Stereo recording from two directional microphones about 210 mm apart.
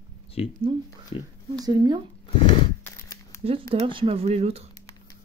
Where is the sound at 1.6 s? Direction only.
15° right (ahead or behind).